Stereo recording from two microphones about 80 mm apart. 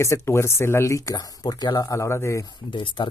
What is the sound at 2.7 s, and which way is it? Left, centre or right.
Speech, left.